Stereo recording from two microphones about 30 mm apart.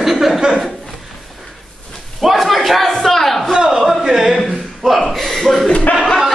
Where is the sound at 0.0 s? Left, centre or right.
Centre.